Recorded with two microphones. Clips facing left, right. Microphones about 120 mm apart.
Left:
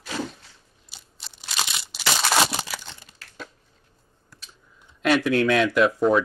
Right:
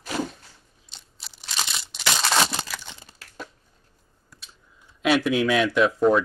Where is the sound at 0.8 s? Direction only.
5° left (ahead or behind).